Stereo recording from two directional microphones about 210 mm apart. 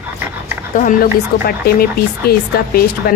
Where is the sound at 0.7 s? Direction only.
45° left (ahead or behind).